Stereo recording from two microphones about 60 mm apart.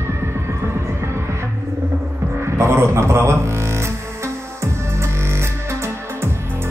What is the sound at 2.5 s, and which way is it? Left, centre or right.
Music, right.